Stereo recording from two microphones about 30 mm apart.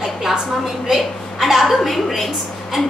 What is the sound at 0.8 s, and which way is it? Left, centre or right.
A woman's voice, centre.